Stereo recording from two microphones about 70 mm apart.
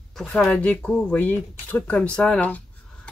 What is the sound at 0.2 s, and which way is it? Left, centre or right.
Speech, centre.